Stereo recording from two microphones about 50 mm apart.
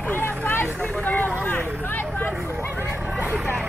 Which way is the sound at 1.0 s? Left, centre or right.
Left.